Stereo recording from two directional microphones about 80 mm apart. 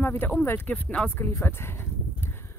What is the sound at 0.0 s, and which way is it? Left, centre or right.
Speech, left.